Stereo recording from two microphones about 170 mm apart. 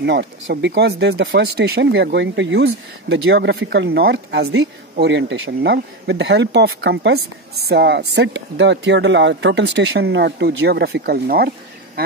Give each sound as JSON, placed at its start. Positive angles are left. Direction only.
{"t": 0.0, "sound": "speech", "side_deg": -85}